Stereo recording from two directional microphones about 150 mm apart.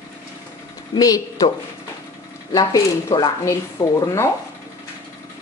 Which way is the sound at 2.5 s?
25° left (ahead or behind).